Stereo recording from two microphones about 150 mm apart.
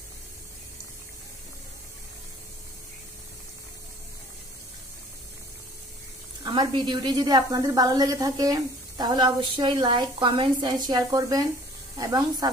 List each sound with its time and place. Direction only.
6.4 s a woman's voice: 30° right (ahead or behind)